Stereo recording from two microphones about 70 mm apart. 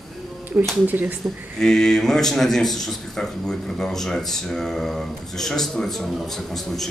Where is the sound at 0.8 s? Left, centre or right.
Right.